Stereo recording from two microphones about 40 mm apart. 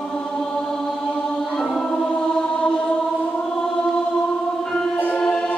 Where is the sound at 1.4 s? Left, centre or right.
Centre.